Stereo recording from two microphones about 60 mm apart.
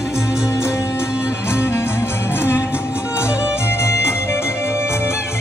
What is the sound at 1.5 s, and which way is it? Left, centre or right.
Music, left.